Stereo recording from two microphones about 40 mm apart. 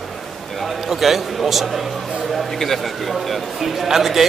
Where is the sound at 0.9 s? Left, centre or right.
Centre.